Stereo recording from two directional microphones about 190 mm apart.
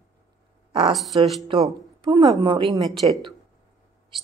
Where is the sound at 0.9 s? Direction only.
Centre (ahead or behind).